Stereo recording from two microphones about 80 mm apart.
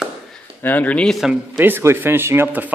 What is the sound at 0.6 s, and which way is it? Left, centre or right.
Speech, centre.